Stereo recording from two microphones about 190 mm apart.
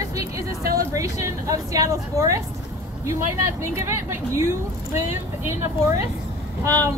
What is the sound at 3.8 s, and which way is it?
A woman's voice, 15° right (ahead or behind).